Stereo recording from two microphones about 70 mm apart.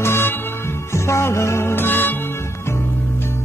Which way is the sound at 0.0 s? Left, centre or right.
Left.